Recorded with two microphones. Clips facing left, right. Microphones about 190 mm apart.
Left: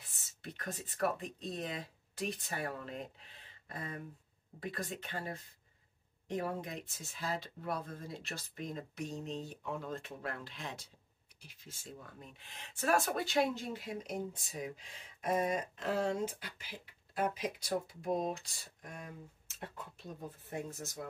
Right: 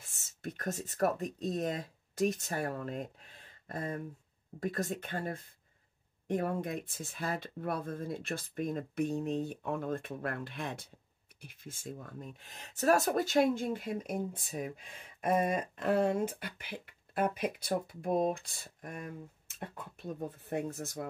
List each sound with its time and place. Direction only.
0.0 s speech: 45° right (ahead or behind)